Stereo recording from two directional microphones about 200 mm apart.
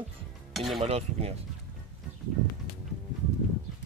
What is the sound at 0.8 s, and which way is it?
Speech, 30° right (ahead or behind).